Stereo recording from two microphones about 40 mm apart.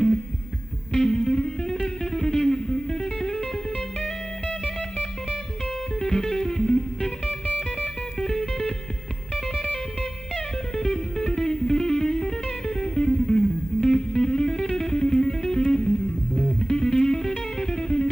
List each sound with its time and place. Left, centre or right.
0.9 s music: centre
5.9 s music: centre